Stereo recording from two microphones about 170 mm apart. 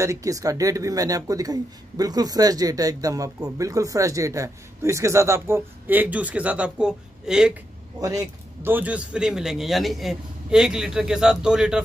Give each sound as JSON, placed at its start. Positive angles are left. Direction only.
{"t": 0.0, "sound": "speech", "side_deg": -20}
{"t": 8.0, "sound": "a man's voice", "side_deg": -20}